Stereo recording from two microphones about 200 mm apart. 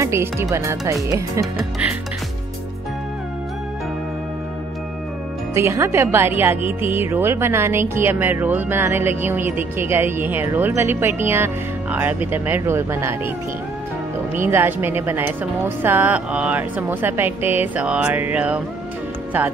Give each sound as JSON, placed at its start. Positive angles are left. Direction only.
{"t": 0.0, "sound": "speech", "side_deg": -15}
{"t": 5.5, "sound": "speech", "side_deg": -15}
{"t": 14.4, "sound": "speech", "side_deg": -10}